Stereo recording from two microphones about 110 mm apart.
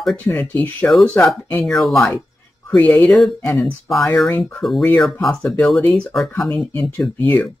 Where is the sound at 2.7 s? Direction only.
Centre (ahead or behind).